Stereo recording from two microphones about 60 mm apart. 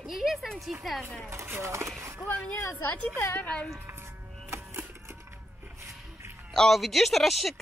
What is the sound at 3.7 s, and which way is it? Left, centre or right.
Music, right.